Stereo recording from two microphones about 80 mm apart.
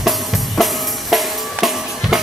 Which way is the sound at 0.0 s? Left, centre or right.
Centre.